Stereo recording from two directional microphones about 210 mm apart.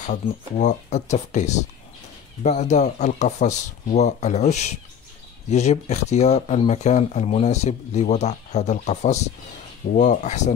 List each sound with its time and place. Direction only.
0.0 s speech: 35° left (ahead or behind)